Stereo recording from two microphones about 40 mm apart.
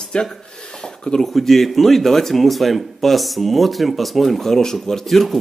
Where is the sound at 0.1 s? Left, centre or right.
Left.